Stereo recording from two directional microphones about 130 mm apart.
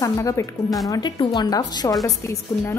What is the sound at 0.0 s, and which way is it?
A woman's voice, 25° left (ahead or behind).